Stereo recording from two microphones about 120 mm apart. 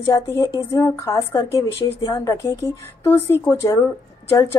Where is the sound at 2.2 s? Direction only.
20° left (ahead or behind).